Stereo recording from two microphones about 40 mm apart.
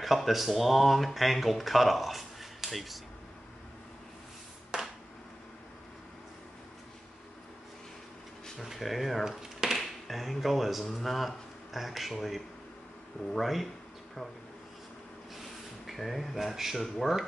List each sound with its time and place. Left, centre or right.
0.0 s speech: centre
4.7 s a sound: centre
8.6 s speech: centre
9.4 s a sound: centre
9.8 s speech: centre
15.9 s speech: centre